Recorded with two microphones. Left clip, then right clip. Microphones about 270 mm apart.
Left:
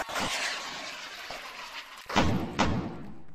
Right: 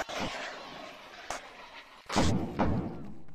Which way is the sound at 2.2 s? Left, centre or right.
Left.